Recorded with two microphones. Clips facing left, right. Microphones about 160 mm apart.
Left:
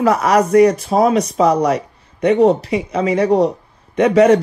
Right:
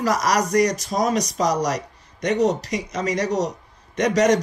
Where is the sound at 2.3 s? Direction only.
40° right (ahead or behind).